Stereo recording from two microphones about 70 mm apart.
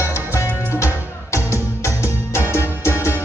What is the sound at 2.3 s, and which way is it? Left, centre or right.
Music, left.